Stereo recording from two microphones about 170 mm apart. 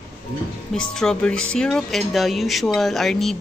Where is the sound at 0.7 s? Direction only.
5° left (ahead or behind).